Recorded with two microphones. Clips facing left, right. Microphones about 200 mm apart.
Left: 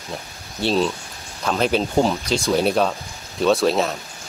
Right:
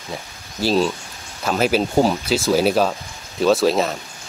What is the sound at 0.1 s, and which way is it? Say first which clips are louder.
Speech: right 1 dB; centre (ahead or behind).